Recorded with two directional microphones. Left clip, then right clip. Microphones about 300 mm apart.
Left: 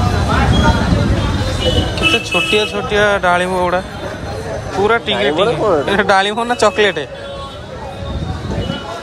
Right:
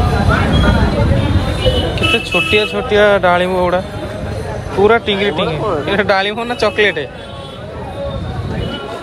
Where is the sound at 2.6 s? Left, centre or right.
Centre.